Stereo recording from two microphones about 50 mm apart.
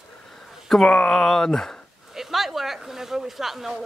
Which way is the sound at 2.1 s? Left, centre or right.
Centre.